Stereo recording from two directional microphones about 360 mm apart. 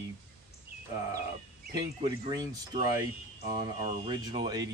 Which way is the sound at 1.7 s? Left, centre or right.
Centre.